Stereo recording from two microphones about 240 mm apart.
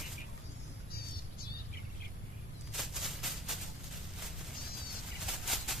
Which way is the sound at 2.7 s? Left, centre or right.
Centre.